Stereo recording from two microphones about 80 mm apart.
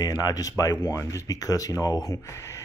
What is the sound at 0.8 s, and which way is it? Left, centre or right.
Speech, left.